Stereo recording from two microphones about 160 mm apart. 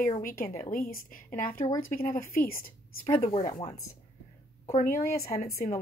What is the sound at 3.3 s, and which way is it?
Speech, 30° left (ahead or behind).